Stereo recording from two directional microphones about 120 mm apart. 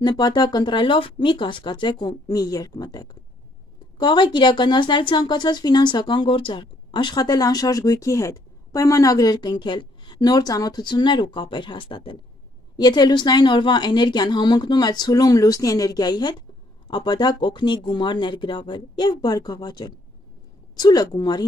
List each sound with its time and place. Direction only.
0.0 s speech: 35° left (ahead or behind)